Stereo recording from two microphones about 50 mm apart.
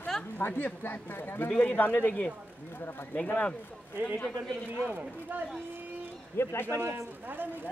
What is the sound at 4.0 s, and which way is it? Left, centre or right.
Speech, right.